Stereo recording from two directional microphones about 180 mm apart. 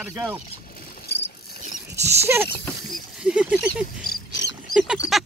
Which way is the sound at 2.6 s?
Centre (ahead or behind).